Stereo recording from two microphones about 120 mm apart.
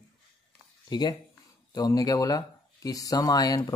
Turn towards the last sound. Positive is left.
turn(degrees=30)  # may be behind; listen again after turning